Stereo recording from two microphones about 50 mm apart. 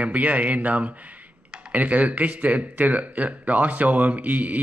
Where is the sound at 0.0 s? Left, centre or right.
Right.